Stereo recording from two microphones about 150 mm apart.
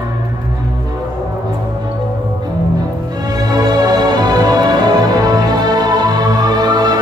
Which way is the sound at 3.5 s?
25° right (ahead or behind).